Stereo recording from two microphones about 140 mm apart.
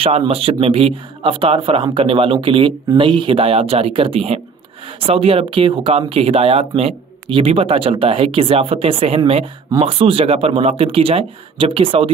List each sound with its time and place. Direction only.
0.3 s speech: 40° right (ahead or behind)